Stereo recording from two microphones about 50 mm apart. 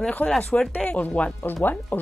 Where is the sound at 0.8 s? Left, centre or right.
Left.